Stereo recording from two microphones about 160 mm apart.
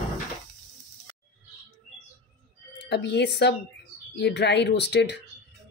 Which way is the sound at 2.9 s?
90° left.